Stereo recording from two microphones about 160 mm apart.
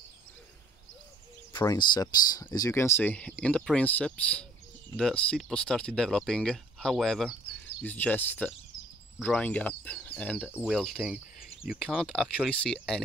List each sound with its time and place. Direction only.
1.5 s speech: 25° left (ahead or behind); by 13.0 s 5° left (ahead or behind)